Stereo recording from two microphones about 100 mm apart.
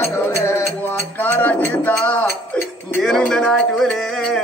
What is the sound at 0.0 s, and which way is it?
Music, 25° left (ahead or behind).